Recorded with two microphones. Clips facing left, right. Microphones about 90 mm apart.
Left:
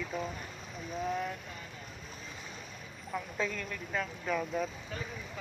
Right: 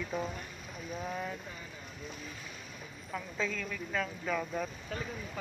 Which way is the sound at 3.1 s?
5° left (ahead or behind).